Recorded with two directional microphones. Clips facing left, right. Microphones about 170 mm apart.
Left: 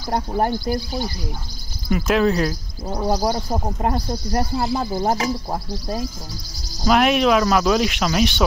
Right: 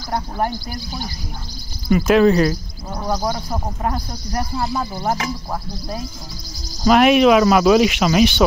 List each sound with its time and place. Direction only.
1.9 s speech: centre (ahead or behind)
3.1 s speech: 35° left (ahead or behind)
6.8 s speech: centre (ahead or behind)